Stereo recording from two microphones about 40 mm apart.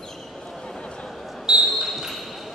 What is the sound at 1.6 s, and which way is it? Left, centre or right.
Basketball bounce, centre.